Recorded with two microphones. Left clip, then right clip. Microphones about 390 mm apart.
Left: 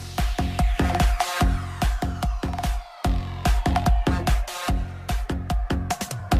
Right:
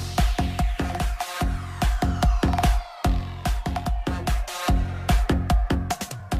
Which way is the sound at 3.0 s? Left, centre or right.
Centre.